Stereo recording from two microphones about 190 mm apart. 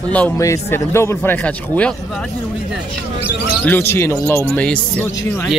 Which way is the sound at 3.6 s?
10° left (ahead or behind).